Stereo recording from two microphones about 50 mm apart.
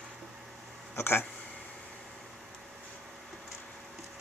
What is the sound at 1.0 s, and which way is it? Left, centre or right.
Speech, left.